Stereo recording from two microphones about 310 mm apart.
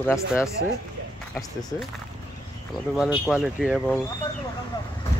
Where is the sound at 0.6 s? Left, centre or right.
Right.